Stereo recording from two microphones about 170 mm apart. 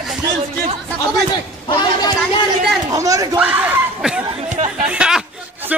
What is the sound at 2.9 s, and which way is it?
Speech, 20° right (ahead or behind).